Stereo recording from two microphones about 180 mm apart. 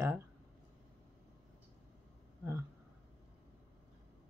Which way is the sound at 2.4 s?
15° right (ahead or behind).